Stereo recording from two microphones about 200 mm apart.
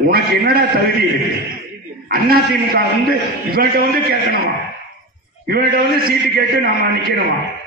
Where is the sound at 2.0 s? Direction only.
50° right (ahead or behind).